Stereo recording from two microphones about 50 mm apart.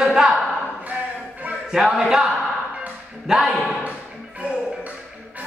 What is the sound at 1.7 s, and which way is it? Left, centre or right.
Speech, centre.